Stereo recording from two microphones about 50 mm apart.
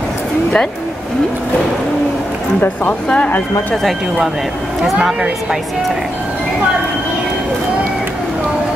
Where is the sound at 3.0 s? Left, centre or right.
Left.